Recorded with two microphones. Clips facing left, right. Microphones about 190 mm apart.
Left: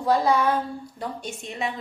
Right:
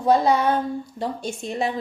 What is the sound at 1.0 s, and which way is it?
Speech, 30° right (ahead or behind).